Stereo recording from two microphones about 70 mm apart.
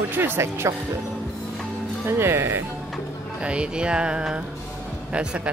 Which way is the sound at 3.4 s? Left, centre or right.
Centre.